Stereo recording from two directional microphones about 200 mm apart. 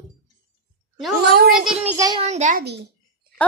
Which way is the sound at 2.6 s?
55° right (ahead or behind).